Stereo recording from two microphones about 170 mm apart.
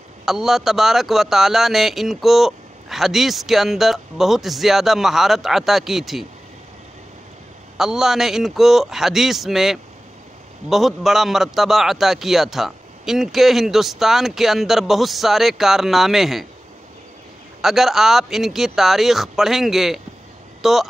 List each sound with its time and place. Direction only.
0.2 s speech: centre (ahead or behind)
7.7 s speech: centre (ahead or behind)
17.6 s speech: centre (ahead or behind)